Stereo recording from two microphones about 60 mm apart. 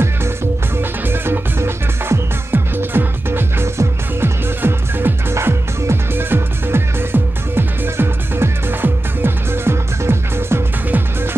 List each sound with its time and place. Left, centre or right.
0.7 s music: right
5.3 s music: right